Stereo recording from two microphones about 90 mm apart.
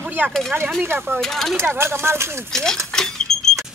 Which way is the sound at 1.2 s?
5° left (ahead or behind).